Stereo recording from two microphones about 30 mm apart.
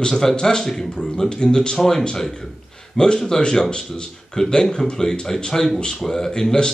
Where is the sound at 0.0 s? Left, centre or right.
Centre.